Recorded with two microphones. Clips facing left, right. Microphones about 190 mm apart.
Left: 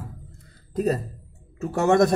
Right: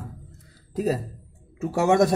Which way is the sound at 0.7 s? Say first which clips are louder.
Left 1 dB; 5° right (ahead or behind).